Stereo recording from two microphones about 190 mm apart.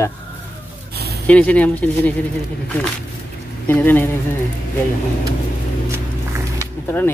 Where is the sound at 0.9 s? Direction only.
55° right (ahead or behind).